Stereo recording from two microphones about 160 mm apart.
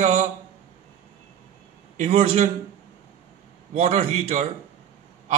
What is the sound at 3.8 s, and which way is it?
Speech, 45° right (ahead or behind).